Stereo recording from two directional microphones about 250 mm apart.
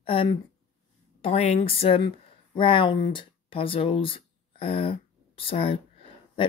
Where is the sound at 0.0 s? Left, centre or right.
Left.